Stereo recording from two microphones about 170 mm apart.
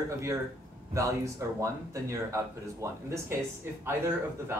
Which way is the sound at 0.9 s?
20° right (ahead or behind).